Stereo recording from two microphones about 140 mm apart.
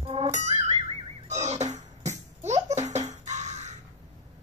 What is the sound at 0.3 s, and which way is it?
Music, 55° right (ahead or behind).